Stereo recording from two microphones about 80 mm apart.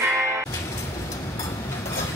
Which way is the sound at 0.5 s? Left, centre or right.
Left.